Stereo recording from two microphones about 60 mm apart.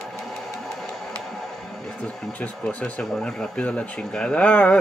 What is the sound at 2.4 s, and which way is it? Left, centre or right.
Speech, left.